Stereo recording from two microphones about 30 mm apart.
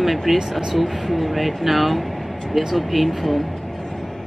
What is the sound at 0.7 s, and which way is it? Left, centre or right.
Speech, centre.